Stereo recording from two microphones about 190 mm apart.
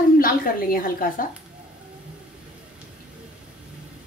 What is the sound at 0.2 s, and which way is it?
A woman's voice, 50° left (ahead or behind).